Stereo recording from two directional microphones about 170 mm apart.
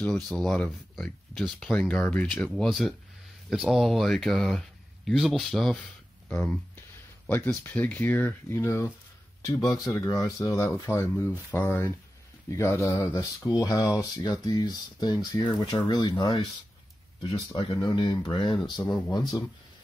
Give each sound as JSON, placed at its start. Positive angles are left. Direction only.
{"t": 0.0, "sound": "speech", "side_deg": 0}
{"t": 6.3, "sound": "speech", "side_deg": 15}